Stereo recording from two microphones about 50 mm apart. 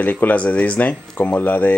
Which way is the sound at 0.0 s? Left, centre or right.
Left.